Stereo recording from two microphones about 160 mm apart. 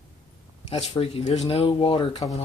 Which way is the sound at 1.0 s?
40° left (ahead or behind).